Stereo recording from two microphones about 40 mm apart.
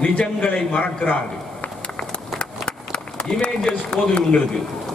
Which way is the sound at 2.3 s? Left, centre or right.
Left.